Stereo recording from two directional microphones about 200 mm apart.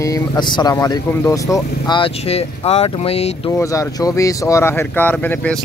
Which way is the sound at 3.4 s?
15° left (ahead or behind).